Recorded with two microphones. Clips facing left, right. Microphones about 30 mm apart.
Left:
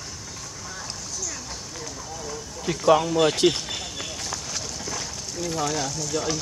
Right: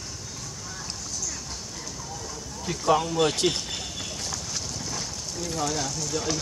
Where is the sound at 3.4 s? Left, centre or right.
Centre.